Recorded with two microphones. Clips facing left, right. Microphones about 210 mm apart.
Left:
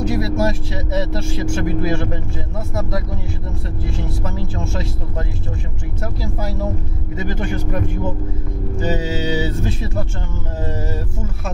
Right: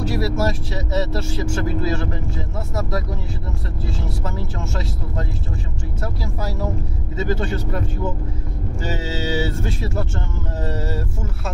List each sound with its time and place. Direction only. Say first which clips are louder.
0.0 s speech: left 2 dB; 20° left (ahead or behind)
3.8 s speech: left 1 dB; 20° left (ahead or behind)
7.2 s speech: right 1 dB; 15° left (ahead or behind)